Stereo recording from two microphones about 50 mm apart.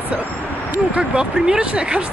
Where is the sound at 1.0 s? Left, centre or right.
Centre.